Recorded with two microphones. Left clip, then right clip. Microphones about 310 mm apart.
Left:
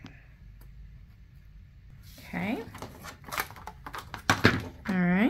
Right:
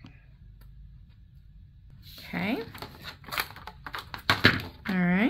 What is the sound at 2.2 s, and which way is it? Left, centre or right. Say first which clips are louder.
Speech: right 2 dB; centre.